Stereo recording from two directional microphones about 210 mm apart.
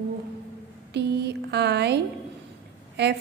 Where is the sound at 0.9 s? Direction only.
55° right (ahead or behind).